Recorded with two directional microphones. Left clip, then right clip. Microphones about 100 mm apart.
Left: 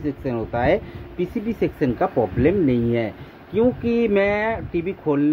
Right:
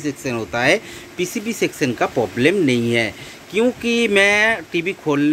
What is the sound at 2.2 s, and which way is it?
Speech, 20° right (ahead or behind).